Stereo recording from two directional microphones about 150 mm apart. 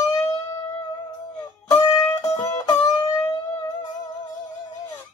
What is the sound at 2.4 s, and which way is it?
Music, 25° left (ahead or behind).